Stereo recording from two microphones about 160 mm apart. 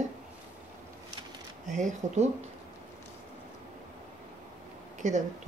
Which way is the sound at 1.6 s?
50° right (ahead or behind).